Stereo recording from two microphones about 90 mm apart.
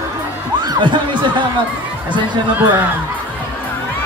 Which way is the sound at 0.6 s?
55° right (ahead or behind).